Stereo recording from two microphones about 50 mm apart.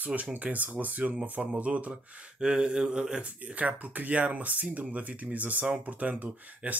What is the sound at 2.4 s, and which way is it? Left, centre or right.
Mantra, centre.